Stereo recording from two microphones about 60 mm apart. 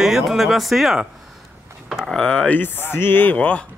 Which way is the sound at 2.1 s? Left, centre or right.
Centre.